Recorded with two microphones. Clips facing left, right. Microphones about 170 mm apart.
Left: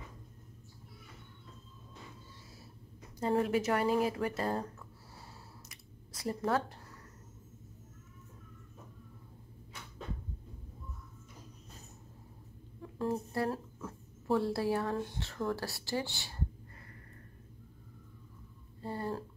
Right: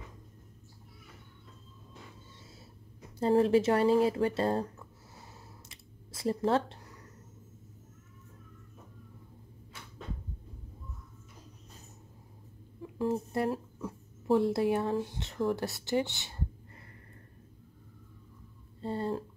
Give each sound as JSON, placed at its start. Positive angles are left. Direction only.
{"t": 3.2, "sound": "speech", "side_deg": -30}
{"t": 5.7, "sound": "a sound", "side_deg": -25}
{"t": 13.1, "sound": "speech", "side_deg": -20}
{"t": 13.5, "sound": "a sound", "side_deg": -15}
{"t": 14.3, "sound": "speech", "side_deg": -20}
{"t": 18.8, "sound": "speech", "side_deg": -25}